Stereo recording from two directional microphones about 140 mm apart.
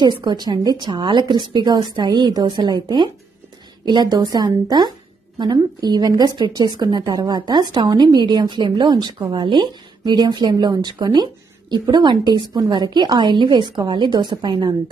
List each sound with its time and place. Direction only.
0.0 s a woman's voice: 30° right (ahead or behind)